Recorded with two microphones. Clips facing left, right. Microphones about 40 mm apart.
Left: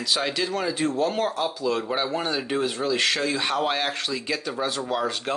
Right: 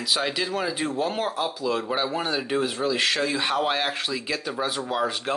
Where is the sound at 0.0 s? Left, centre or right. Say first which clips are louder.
Even; centre.